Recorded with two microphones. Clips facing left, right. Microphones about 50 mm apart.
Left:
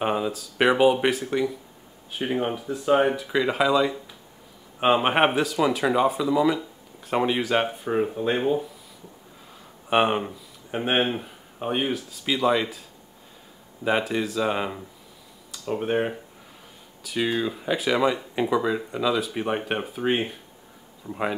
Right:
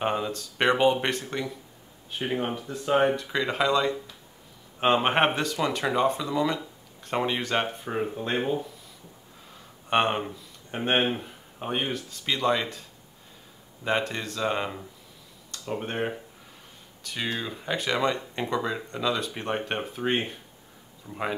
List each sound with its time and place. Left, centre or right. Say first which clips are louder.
0.0 s speech: left 3 dB; centre
13.8 s speech: left 4 dB; centre